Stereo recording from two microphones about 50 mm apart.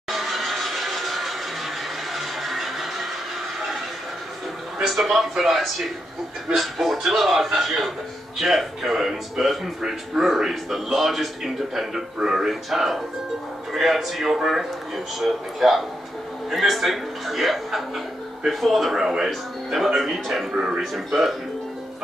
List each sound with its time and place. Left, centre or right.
0.1 s a sound: centre
4.8 s speech: centre
20.5 s speech: centre
20.8 s speech: centre